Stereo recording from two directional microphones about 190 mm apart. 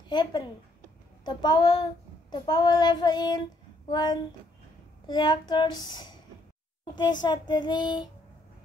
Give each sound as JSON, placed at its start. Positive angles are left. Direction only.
{"t": 0.1, "sound": "a woman's voice", "side_deg": 25}
{"t": 1.2, "sound": "child singing", "side_deg": 25}